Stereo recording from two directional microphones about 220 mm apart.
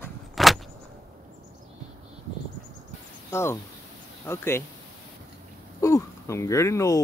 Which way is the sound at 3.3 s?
10° left (ahead or behind).